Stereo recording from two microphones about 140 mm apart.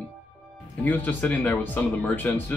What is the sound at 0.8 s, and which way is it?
Speech, 10° left (ahead or behind).